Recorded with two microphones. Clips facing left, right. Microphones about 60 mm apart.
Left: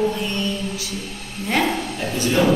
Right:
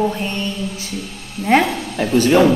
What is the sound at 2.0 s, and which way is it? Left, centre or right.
Speech, right.